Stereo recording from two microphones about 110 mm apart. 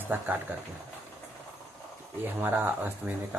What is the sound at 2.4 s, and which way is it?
Speech, 15° right (ahead or behind).